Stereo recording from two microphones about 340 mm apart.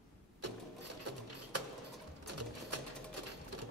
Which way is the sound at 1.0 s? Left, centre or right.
Right.